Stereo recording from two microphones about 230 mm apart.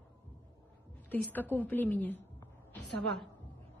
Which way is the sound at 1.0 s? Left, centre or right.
Centre.